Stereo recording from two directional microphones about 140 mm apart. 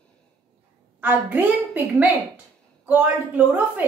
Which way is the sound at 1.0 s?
15° right (ahead or behind).